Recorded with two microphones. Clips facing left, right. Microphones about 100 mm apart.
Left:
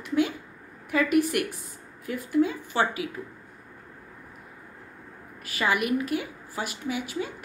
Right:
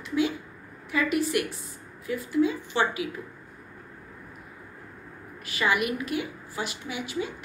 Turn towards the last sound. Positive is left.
turn(degrees=45)  # may be behind; listen again after turning